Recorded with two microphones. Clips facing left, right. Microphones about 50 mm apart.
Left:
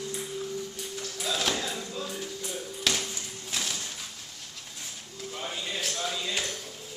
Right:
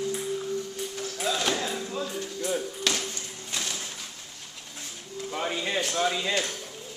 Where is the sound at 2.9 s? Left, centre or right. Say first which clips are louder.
Left 2 dB; centre.